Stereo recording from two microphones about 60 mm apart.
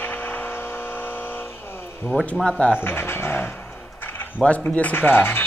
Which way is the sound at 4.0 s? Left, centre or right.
Left.